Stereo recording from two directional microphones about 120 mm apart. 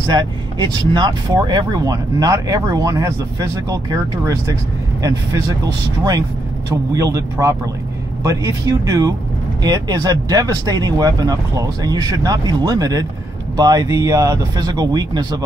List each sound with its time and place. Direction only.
0.1 s speech: 35° right (ahead or behind)
6.7 s speech: 30° right (ahead or behind)